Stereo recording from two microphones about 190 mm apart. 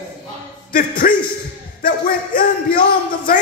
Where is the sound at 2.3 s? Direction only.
50° left (ahead or behind).